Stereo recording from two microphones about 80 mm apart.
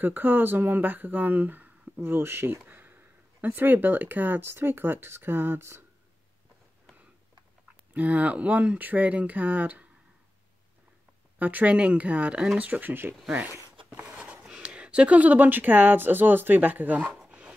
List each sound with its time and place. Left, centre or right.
0.0 s speech: right
2.6 s a sound: right
3.4 s speech: right
7.9 s speech: centre
11.3 s speech: right
17.2 s a sound: centre